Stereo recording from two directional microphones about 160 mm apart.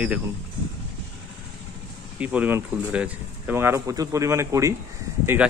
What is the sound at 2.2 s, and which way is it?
Speech, 10° right (ahead or behind).